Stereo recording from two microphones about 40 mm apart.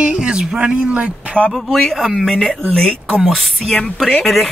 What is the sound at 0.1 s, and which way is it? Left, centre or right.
Speech, right.